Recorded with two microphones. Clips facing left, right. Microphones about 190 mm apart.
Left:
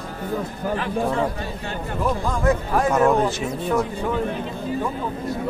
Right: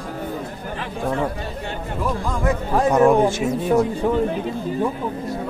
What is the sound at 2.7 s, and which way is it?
Speech, 15° right (ahead or behind).